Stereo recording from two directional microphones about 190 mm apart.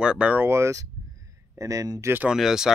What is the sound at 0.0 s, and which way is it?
Speech, 5° right (ahead or behind).